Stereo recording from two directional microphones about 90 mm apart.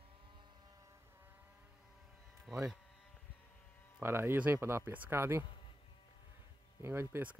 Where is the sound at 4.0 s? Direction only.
25° right (ahead or behind).